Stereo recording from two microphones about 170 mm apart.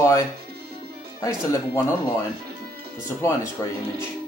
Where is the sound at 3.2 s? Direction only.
15° left (ahead or behind).